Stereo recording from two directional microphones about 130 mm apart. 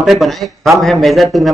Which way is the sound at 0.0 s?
Centre (ahead or behind).